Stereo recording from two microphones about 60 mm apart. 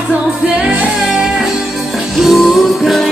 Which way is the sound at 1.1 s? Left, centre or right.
Centre.